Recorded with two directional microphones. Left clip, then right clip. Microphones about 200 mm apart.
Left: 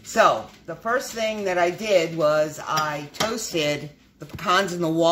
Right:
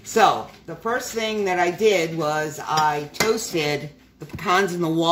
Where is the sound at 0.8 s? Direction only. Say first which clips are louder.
Even; 20° left (ahead or behind).